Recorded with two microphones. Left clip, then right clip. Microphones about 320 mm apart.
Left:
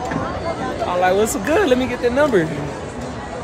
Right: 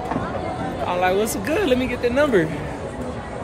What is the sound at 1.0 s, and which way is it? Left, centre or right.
Speech, centre.